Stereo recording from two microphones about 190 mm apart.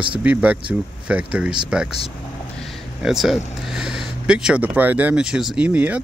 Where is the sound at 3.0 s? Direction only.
Centre (ahead or behind).